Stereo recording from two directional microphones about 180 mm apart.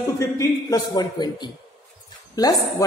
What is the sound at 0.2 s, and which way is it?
A woman's voice, 20° left (ahead or behind).